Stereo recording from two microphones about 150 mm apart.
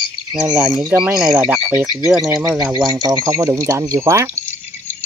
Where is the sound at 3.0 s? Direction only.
25° right (ahead or behind).